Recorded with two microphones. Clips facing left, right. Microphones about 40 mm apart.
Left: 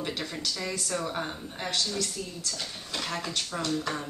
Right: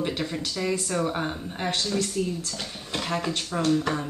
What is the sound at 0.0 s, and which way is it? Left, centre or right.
Speech, centre.